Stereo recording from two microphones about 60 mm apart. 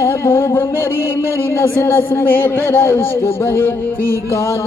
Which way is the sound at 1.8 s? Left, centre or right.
Left.